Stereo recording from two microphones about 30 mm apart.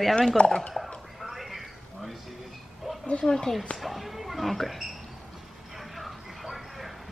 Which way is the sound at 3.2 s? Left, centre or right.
Left.